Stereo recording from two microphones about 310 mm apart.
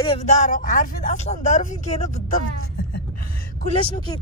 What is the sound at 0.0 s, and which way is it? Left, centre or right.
Speech, left.